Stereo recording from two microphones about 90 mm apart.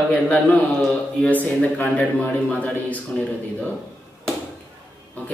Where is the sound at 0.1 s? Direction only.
15° left (ahead or behind).